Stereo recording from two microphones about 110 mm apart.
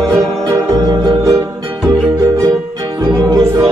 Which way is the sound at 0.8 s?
35° right (ahead or behind).